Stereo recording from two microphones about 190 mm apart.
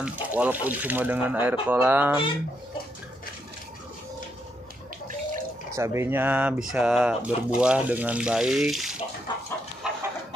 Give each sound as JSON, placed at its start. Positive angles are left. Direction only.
{"t": 0.0, "sound": "speech", "side_deg": -5}
{"t": 5.8, "sound": "speech", "side_deg": -15}
{"t": 9.3, "sound": "a sound", "side_deg": 25}